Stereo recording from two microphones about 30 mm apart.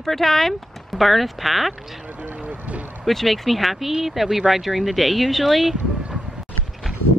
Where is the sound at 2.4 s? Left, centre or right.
Right.